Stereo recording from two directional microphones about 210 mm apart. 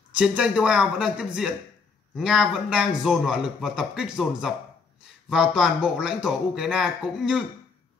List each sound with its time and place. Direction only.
0.1 s a man's voice: 5° right (ahead or behind)